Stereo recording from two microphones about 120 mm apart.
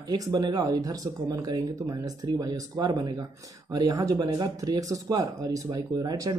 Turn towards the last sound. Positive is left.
turn(degrees=-30)  # may be behind; listen again after turning